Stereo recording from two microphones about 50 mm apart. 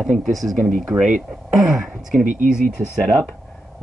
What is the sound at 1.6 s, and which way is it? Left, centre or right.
Speech, centre.